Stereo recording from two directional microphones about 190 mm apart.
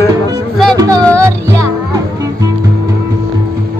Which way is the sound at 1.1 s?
15° right (ahead or behind).